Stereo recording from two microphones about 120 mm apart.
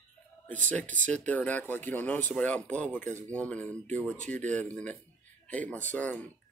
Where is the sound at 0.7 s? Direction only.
10° left (ahead or behind).